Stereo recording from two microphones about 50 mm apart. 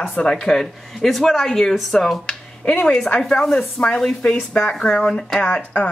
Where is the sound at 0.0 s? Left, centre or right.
Left.